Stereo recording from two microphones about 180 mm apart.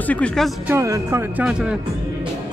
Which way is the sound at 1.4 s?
5° right (ahead or behind).